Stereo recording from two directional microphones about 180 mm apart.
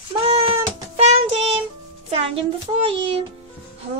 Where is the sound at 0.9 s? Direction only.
35° right (ahead or behind).